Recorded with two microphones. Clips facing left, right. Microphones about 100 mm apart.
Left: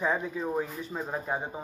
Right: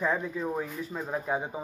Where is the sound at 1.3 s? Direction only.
10° right (ahead or behind).